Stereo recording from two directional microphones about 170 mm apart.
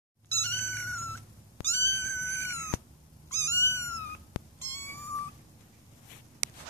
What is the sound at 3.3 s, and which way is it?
Cat, 15° left (ahead or behind).